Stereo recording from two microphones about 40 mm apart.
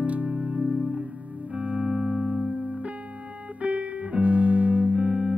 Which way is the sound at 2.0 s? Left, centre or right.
Centre.